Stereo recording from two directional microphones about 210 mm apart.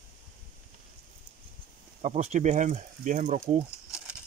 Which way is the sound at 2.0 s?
30° right (ahead or behind).